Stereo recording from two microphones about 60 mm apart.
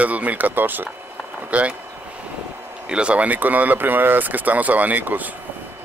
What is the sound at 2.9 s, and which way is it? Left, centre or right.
Speech, centre.